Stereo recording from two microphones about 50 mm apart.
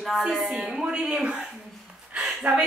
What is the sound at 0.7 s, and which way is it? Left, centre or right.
Speech, centre.